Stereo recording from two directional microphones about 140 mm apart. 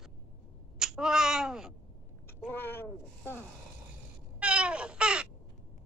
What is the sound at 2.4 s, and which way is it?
Speech, 15° left (ahead or behind).